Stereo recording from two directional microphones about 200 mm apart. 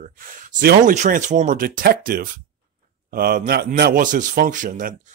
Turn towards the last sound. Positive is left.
turn(degrees=-40)  # may be behind; listen again after turning